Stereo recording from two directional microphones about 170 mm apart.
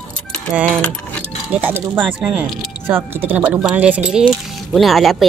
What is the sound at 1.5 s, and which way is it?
Speech, 10° right (ahead or behind).